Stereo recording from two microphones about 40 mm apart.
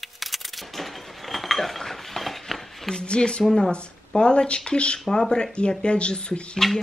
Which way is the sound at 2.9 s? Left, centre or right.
Left.